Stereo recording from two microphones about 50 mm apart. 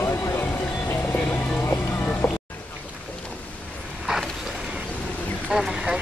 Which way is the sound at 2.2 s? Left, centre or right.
Left.